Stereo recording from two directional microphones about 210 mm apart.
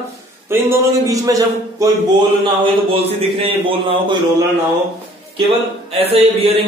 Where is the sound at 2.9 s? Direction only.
25° right (ahead or behind).